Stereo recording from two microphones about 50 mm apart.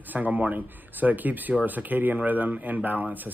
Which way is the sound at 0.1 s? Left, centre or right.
Right.